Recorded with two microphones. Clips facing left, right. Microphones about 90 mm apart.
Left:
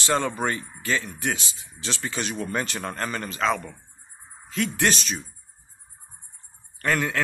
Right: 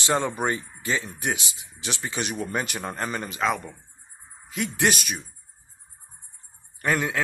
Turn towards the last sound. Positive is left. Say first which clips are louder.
# even
turn(degrees=-15)  # may be behind; listen again after turning